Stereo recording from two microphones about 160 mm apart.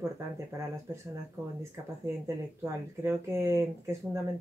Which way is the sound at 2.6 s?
15° right (ahead or behind).